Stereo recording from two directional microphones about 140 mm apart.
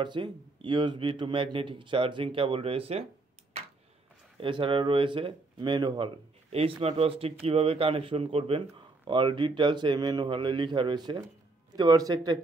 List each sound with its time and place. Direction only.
0.0 s speech: 35° right (ahead or behind)
4.4 s speech: 35° right (ahead or behind)